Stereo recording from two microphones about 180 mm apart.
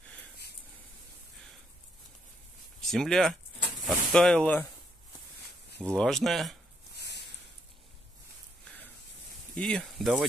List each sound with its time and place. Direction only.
2.8 s speech: centre (ahead or behind)
5.9 s speech: 5° left (ahead or behind)
7.0 s a sound: 65° left (ahead or behind)
9.6 s speech: 5° left (ahead or behind)